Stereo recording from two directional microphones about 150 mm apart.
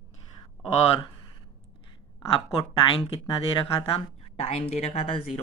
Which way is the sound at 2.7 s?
35° left (ahead or behind).